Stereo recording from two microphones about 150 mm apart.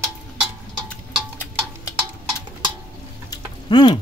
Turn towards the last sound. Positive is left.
turn(degrees=30)  # may be behind; listen again after turning